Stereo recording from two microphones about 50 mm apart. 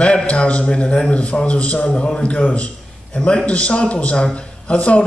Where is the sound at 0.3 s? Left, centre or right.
Left.